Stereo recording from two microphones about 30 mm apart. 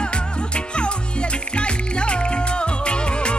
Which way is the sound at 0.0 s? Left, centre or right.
Left.